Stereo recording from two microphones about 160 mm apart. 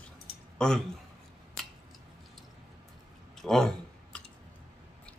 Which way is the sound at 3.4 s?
Centre (ahead or behind).